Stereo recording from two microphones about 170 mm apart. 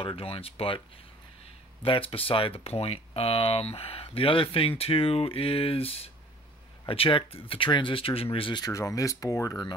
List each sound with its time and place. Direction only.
0.0 s speech: 35° left (ahead or behind)